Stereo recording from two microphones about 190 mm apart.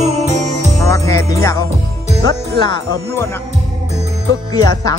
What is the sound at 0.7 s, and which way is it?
Music, 15° left (ahead or behind).